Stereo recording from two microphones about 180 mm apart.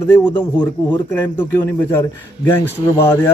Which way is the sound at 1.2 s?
10° left (ahead or behind).